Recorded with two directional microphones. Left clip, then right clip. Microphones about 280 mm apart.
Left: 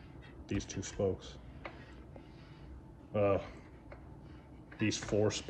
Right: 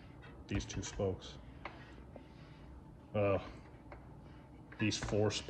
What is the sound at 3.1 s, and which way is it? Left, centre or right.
Speech, centre.